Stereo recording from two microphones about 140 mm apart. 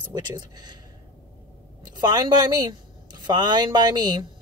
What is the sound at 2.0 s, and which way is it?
Speech, 30° right (ahead or behind).